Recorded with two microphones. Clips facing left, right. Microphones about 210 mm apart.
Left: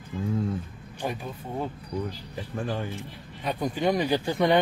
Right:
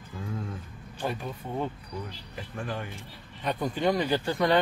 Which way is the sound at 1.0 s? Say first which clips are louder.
Even; 15° left (ahead or behind).